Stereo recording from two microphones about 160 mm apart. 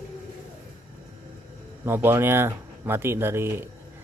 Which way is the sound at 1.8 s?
15° right (ahead or behind).